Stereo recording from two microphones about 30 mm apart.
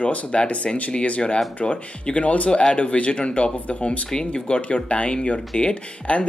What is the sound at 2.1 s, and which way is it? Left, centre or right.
Speech, left.